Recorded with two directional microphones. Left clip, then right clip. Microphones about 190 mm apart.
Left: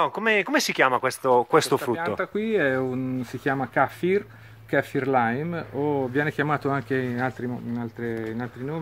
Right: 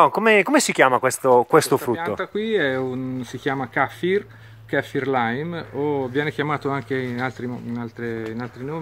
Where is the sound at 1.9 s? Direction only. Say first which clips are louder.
Right 2 dB; 20° left (ahead or behind).